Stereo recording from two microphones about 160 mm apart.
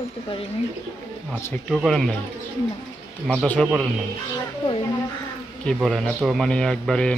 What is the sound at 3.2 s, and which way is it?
Speech, centre (ahead or behind).